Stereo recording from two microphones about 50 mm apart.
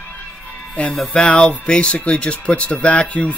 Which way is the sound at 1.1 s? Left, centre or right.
Centre.